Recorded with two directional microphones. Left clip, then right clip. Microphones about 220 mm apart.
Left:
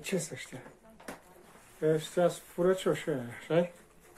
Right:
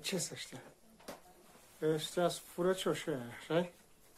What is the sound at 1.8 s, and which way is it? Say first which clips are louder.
Speech: left 6 dB; 10° right (ahead or behind).